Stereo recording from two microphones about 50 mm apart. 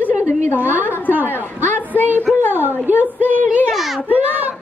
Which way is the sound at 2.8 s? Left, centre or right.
Right.